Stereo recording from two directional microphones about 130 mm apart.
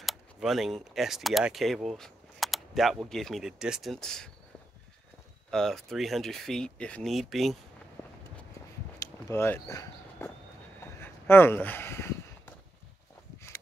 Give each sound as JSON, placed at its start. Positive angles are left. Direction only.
{"t": 0.0, "sound": "speech", "side_deg": 0}
{"t": 5.5, "sound": "speech", "side_deg": 5}
{"t": 9.0, "sound": "a sound", "side_deg": 20}